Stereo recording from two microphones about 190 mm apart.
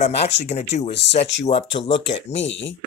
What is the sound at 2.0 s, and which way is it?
Speech, 70° left (ahead or behind).